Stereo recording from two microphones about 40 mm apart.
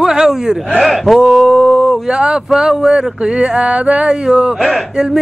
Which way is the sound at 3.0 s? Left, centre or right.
Right.